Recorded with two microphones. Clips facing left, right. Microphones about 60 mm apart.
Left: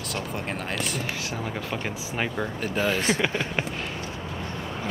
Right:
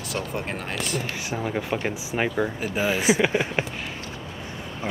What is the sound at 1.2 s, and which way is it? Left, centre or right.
Speech, centre.